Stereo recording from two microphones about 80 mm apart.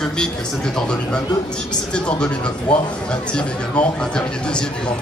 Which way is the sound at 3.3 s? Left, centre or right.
Centre.